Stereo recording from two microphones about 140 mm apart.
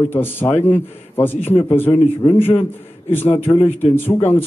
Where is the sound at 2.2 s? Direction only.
15° left (ahead or behind).